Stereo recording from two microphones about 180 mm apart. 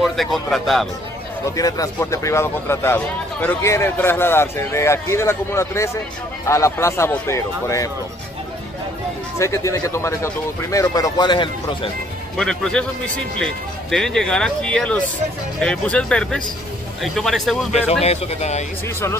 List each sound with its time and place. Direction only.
0.0 s a man's voice: centre (ahead or behind)
1.4 s speech: 20° left (ahead or behind)
9.4 s speech: 15° left (ahead or behind)
12.4 s a man's voice: 5° left (ahead or behind)
18.0 s speech: 40° left (ahead or behind)